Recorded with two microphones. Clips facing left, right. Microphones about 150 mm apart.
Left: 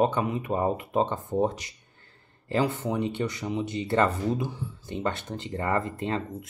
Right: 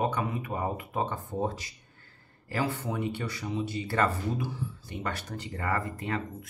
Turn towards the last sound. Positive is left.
turn(degrees=25)  # may be behind; listen again after turning